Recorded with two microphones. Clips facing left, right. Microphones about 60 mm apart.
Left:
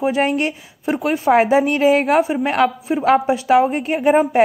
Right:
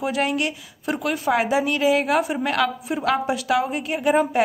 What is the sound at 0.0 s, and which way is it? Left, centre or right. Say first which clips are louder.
A woman's voice: left 5 dB; left.